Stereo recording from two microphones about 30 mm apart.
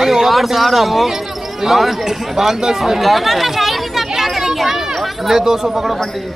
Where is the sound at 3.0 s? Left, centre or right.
Centre.